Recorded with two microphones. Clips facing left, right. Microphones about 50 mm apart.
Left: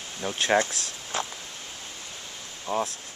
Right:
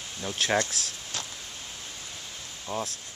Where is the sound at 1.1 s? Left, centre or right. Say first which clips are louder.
Left 8 dB; left.